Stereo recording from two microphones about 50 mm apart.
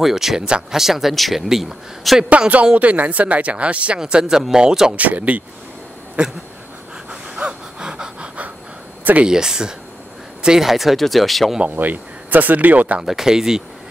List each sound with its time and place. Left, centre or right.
0.0 s speech: centre
2.2 s speech: right
4.0 s speech: centre
4.9 s speech: right
6.2 s speech: right
7.1 s gasp: right
9.2 s speech: centre
11.7 s speech: right
13.0 s speech: centre